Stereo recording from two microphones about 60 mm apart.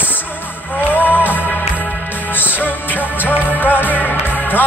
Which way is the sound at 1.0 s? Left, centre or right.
Left.